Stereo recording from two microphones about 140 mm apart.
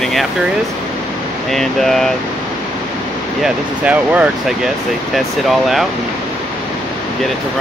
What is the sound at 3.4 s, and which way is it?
Speech, 10° right (ahead or behind).